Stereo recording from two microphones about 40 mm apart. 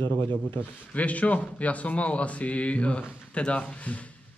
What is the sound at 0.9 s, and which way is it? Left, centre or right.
A man's voice, left.